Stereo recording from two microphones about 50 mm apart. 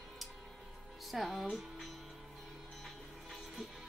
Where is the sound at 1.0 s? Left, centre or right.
Centre.